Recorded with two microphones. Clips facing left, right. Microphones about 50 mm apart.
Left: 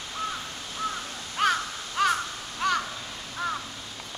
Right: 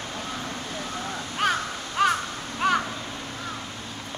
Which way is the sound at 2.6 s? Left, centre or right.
Centre.